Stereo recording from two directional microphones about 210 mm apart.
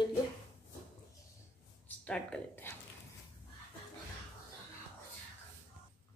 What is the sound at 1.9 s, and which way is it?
Speech, 5° left (ahead or behind).